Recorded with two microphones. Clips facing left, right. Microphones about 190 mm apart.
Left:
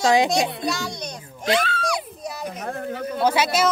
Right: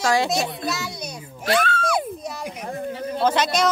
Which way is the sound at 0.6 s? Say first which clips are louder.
Left 2 dB; 5° right (ahead or behind).